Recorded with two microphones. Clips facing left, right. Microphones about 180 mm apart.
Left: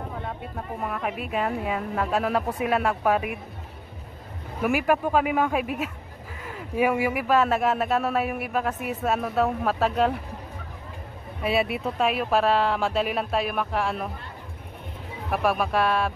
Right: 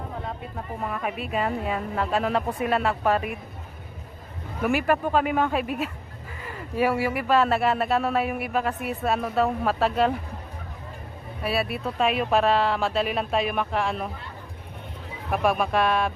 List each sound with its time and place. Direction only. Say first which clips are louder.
0.7 s speech: even; centre (ahead or behind)
4.6 s speech: even; 10° left (ahead or behind)
11.4 s speech: left 2 dB; 20° left (ahead or behind)
12.0 s speech: right 1 dB; 5° left (ahead or behind)
15.3 s speech: right 1 dB; 5° left (ahead or behind)